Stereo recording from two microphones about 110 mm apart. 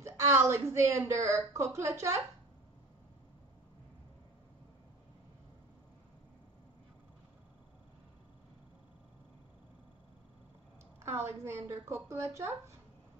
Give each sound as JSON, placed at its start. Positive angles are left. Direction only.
{"t": 0.0, "sound": "a woman's voice", "side_deg": -25}
{"t": 11.1, "sound": "a woman's voice", "side_deg": -25}